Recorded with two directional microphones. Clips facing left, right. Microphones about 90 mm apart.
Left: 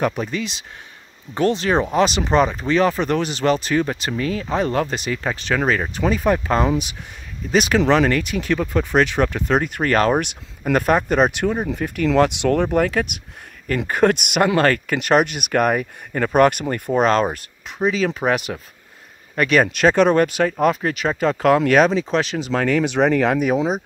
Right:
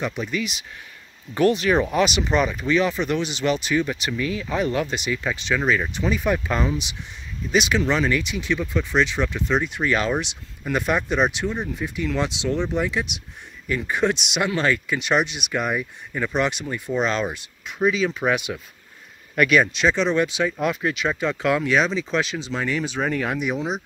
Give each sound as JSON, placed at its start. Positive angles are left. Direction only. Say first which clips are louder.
{"t": 0.0, "sound": "speech", "louder": "left 4 dB", "side_deg": 40}
{"t": 6.6, "sound": "speech", "louder": "left 5 dB", "side_deg": 50}
{"t": 7.8, "sound": "speech", "louder": "left 5 dB", "side_deg": 60}
{"t": 19.6, "sound": "speech", "louder": "left 6 dB", "side_deg": 50}
{"t": 22.5, "sound": "speech", "louder": "left 7 dB", "side_deg": 70}
{"t": 23.4, "sound": "speech", "louder": "left 6 dB", "side_deg": 40}